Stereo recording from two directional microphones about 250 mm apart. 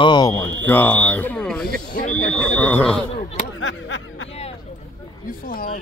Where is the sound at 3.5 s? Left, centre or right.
Left.